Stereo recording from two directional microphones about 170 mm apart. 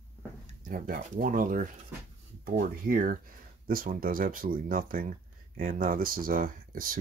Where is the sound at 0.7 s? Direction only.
55° right (ahead or behind).